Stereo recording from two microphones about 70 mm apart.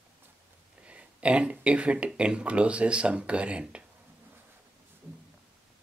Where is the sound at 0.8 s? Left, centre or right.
Centre.